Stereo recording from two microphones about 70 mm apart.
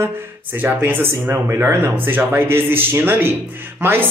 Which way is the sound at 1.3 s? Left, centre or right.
Right.